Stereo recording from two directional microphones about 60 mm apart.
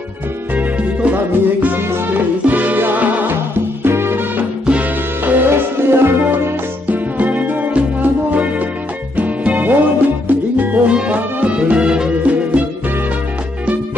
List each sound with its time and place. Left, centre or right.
0.6 s music: right
6.9 s music: right
10.9 s music: centre